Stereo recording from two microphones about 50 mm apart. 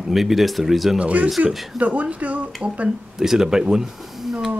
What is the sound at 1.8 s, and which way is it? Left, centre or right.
Speech, right.